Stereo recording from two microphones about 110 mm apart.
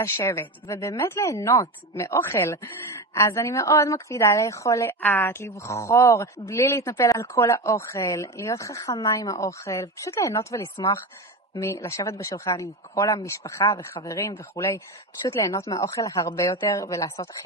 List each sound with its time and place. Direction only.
0.0 s a woman's voice: 20° left (ahead or behind)